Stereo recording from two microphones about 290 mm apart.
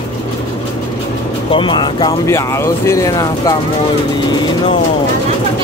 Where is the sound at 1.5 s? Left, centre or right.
Centre.